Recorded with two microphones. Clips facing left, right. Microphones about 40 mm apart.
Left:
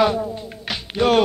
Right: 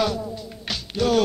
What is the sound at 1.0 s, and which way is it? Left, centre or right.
Music, left.